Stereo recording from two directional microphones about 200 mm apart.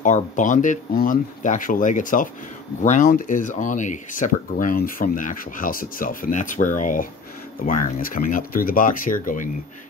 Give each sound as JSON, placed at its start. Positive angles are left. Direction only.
{"t": 0.0, "sound": "speech", "side_deg": 40}